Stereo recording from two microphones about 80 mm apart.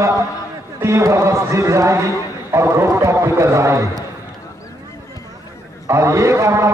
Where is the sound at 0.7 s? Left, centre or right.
Right.